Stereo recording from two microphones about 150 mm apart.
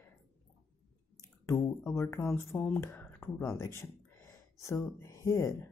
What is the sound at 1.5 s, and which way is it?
Speech, 15° left (ahead or behind).